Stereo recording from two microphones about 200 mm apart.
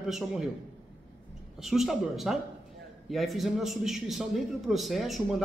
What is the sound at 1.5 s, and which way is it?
A man's voice, centre (ahead or behind).